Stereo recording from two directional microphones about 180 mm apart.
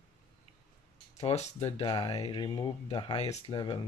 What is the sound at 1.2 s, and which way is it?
Speech, 35° left (ahead or behind).